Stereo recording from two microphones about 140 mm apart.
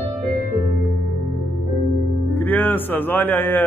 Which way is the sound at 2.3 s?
15° left (ahead or behind).